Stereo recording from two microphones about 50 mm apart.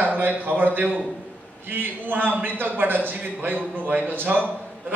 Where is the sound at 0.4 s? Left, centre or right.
Right.